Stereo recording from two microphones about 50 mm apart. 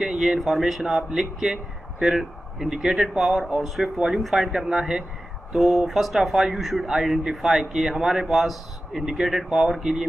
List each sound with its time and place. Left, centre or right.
0.0 s speech: centre